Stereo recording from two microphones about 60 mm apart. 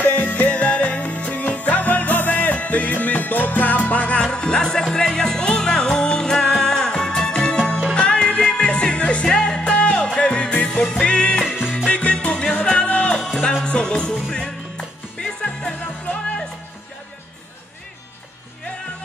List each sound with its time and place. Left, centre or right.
0.1 s music: left
11.4 s music: centre
11.9 s music: centre
13.2 s music: centre